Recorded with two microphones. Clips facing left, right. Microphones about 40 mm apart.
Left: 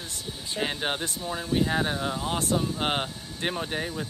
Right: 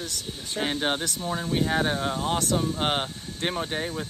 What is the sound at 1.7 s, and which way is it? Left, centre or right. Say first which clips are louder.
Speech: right 2 dB; centre.